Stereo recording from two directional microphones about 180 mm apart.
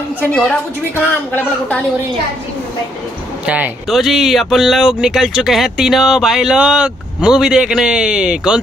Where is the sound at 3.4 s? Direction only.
10° right (ahead or behind).